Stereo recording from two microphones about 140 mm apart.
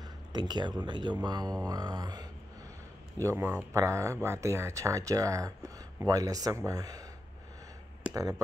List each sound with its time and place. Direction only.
0.3 s speech: 30° right (ahead or behind)
3.2 s speech: 20° right (ahead or behind)
8.1 s speech: 25° right (ahead or behind)